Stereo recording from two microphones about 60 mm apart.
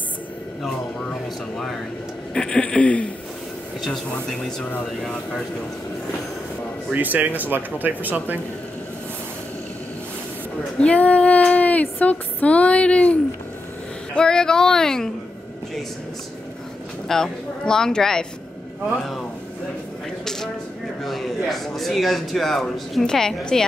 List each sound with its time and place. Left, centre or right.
2.3 s speech: centre
3.8 s speech: centre
6.9 s speech: right
10.8 s a sound: left
14.1 s speech: centre
17.1 s speech: centre
21.0 s speech: centre